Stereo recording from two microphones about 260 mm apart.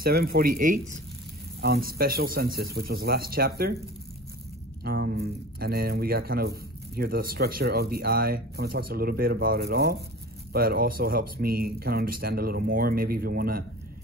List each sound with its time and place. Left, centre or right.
0.0 s speech: right
4.8 s speech: right